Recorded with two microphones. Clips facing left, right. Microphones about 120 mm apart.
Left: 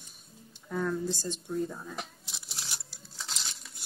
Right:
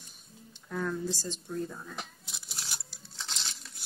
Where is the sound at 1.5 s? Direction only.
5° left (ahead or behind).